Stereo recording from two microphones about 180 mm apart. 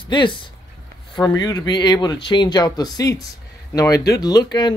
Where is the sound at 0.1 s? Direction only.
25° left (ahead or behind).